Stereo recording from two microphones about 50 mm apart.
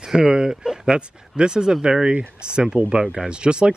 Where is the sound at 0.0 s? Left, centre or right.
Centre.